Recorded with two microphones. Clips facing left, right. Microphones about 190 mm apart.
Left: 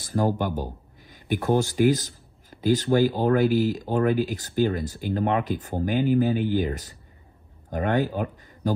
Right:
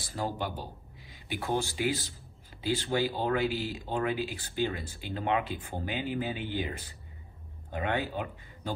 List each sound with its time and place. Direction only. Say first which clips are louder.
0.0 s speech: left 9 dB; 50° left (ahead or behind)